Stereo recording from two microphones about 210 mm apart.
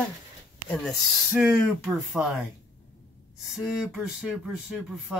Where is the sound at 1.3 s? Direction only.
Centre (ahead or behind).